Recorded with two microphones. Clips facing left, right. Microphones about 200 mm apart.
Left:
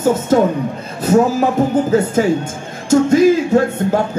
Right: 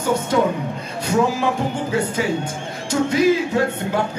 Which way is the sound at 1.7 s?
45° left (ahead or behind).